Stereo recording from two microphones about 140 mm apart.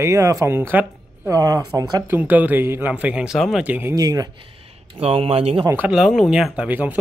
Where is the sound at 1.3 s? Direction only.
25° right (ahead or behind).